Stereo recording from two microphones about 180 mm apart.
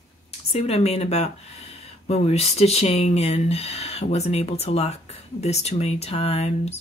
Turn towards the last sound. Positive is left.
turn(degrees=35)  # may be behind; listen again after turning